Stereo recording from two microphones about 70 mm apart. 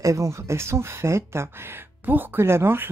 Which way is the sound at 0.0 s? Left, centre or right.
Right.